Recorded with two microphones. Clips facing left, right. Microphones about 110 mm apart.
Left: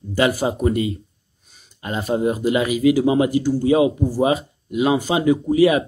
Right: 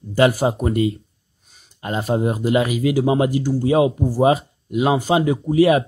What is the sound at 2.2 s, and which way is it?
Speech, 35° right (ahead or behind).